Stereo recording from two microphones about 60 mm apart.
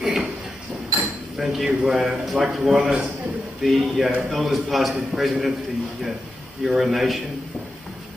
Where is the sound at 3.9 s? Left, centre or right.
Centre.